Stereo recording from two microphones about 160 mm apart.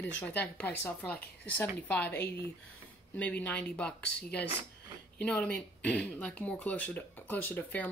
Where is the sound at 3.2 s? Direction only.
10° left (ahead or behind).